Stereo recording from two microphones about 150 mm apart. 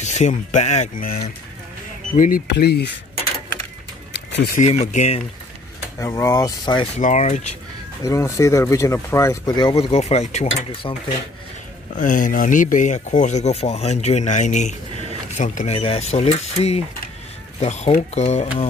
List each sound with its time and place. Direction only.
0.0 s speech: 50° left (ahead or behind)
2.1 s speech: 70° left (ahead or behind); by 2.8 s 90° left
4.6 s speech: 50° left (ahead or behind)
5.9 s speech: 20° left (ahead or behind)
7.0 s speech: 50° left (ahead or behind)
8.0 s speech: 20° left (ahead or behind)
9.8 s speech: 45° left (ahead or behind)
12.0 s speech: 60° left (ahead or behind)
15.7 s speech: 40° left (ahead or behind)